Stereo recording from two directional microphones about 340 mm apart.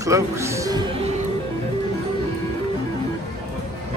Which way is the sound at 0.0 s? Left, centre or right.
Centre.